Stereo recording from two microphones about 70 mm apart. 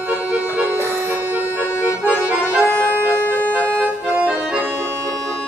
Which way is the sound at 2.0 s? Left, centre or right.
Centre.